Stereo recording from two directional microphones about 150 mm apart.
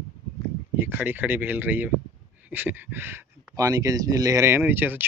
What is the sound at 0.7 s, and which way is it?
Speech, 10° right (ahead or behind).